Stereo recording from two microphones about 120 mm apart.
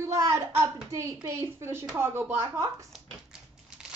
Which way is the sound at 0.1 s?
25° right (ahead or behind).